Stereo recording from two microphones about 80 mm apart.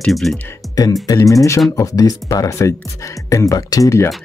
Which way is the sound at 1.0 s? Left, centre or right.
Left.